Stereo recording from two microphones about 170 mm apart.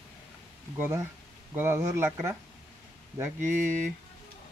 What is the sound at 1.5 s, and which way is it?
Speech, 15° right (ahead or behind).